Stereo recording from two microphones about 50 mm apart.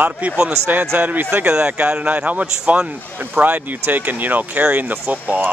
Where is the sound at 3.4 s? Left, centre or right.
Right.